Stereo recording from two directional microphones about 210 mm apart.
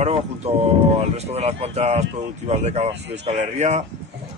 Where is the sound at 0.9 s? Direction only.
30° right (ahead or behind).